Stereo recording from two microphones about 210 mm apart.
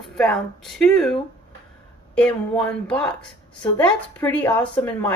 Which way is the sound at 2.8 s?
5° left (ahead or behind).